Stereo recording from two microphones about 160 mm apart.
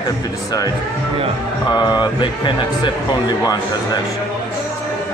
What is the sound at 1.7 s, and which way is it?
Speech, 25° left (ahead or behind).